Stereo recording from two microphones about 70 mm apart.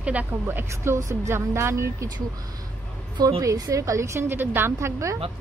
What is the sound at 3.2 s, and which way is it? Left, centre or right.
A woman's voice, right.